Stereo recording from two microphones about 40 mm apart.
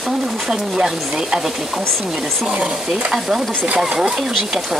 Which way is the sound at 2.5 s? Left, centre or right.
Centre.